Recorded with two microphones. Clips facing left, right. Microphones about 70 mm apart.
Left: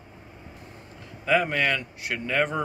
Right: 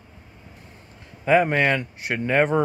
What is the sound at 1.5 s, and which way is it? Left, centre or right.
Speech, right.